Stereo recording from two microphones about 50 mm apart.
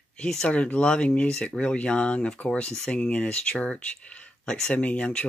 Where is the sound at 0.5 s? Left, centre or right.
Left.